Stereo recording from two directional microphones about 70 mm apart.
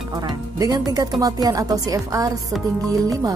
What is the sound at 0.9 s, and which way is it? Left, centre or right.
Speech, right.